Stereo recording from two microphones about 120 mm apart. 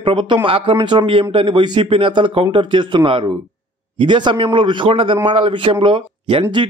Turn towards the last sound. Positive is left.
turn(degrees=-45)  # may be behind; listen again after turning